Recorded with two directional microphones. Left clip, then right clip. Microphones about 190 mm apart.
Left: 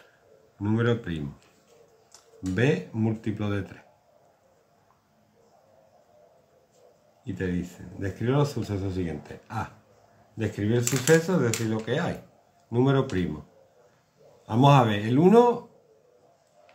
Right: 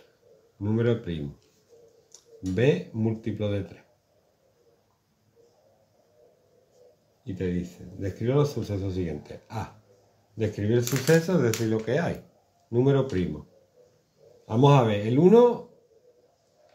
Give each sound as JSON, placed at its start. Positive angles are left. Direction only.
{"t": 0.6, "sound": "speech", "side_deg": 0}
{"t": 2.1, "sound": "speech", "side_deg": 0}
{"t": 7.2, "sound": "speech", "side_deg": 0}
{"t": 11.1, "sound": "speech", "side_deg": -15}
{"t": 12.7, "sound": "speech", "side_deg": 0}
{"t": 14.4, "sound": "speech", "side_deg": 0}